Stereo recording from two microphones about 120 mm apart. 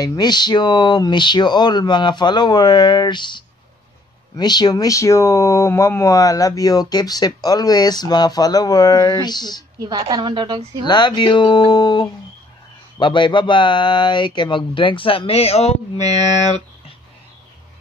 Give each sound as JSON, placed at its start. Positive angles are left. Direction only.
{"t": 0.0, "sound": "speech", "side_deg": 35}
{"t": 9.8, "sound": "a woman's voice", "side_deg": -35}
{"t": 10.9, "sound": "speech", "side_deg": 40}